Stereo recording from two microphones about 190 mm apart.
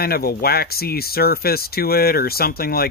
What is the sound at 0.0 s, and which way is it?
Speech, 55° left (ahead or behind).